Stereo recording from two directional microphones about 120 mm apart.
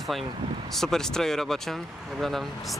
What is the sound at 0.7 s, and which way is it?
Speech, 5° left (ahead or behind).